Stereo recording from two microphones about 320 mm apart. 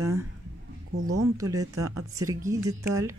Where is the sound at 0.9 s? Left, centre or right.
Right.